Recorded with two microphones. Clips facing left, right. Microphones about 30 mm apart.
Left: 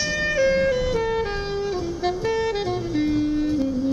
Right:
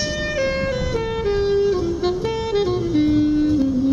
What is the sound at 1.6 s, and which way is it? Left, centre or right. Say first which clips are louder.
Music: right 6 dB; centre.